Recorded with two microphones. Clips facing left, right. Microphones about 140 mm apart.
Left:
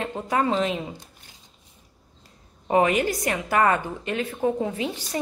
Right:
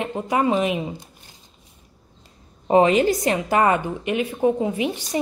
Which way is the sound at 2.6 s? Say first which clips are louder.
Right 5 dB; 25° right (ahead or behind).